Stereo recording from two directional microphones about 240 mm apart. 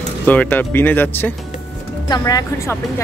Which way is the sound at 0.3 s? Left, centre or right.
Centre.